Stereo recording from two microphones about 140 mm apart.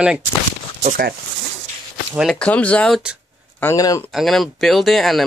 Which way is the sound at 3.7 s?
25° left (ahead or behind).